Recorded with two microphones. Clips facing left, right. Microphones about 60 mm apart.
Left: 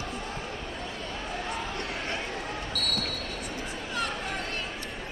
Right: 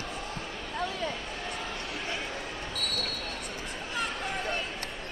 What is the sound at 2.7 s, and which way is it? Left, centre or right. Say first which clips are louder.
Basketball bounce: left 2 dB; left.